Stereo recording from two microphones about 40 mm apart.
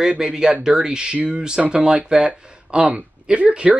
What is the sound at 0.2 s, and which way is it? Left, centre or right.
Speech, centre.